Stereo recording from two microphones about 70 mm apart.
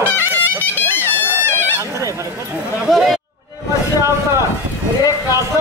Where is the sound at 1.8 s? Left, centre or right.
Right.